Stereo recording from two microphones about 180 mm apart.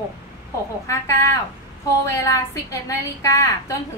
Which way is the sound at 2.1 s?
15° left (ahead or behind).